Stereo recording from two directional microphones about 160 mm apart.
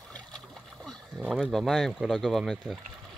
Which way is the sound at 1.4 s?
Centre (ahead or behind).